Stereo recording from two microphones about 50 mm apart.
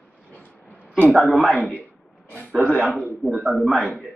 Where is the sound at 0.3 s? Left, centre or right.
Left.